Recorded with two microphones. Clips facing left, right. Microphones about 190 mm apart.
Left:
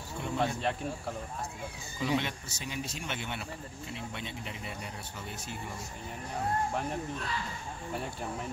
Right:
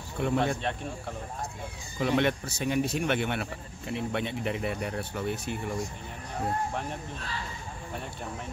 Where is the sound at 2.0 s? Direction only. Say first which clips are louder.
Right 6 dB; 60° right (ahead or behind).